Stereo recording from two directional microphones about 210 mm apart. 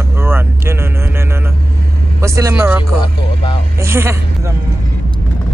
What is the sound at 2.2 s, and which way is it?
Speech, 15° right (ahead or behind).